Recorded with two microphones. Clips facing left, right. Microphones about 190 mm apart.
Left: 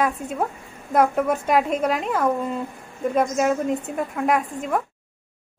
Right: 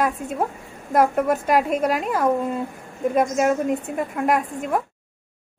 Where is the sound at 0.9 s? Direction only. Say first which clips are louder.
Right 1 dB; centre (ahead or behind).